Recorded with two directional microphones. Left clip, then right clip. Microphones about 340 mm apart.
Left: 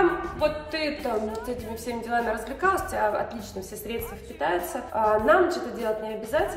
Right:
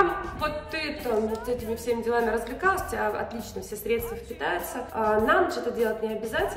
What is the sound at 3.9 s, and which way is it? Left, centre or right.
A woman's voice, centre.